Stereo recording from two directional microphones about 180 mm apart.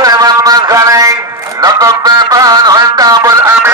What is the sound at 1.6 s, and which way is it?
Music, 20° right (ahead or behind).